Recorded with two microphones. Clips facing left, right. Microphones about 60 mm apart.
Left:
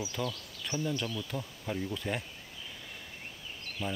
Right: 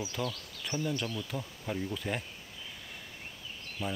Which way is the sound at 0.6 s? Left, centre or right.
Centre.